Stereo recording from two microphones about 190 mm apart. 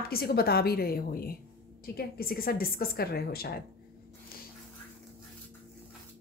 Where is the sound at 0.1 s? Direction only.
55° left (ahead or behind).